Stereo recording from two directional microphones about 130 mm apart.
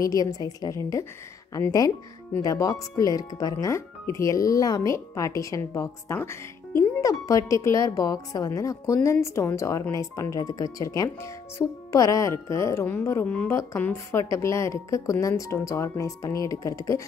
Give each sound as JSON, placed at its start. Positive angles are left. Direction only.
{"t": 0.0, "sound": "speech", "side_deg": 30}